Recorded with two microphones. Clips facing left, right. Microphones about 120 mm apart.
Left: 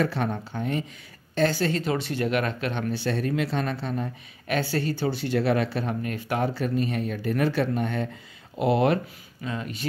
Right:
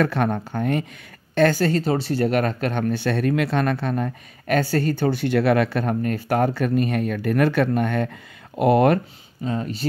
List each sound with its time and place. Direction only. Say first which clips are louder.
0.0 s speech: right 5 dB; 55° right (ahead or behind)
4.6 s speech: right 5 dB; 45° right (ahead or behind)
9.4 s speech: right 6 dB; 35° right (ahead or behind)